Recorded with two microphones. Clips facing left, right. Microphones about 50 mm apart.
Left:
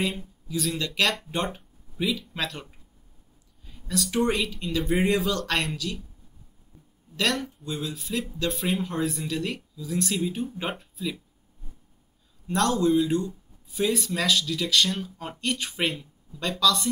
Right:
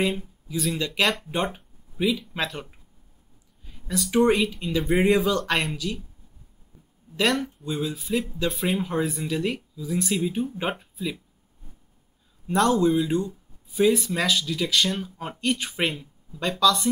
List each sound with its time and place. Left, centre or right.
0.0 s speech: centre
7.2 s speech: centre
12.4 s speech: centre